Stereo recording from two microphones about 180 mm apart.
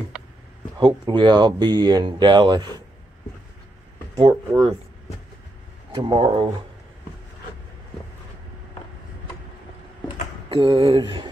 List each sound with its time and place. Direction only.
0.7 s speech: 25° right (ahead or behind)
4.1 s speech: 25° right (ahead or behind)
5.9 s speech: 25° right (ahead or behind)
10.5 s speech: 30° right (ahead or behind)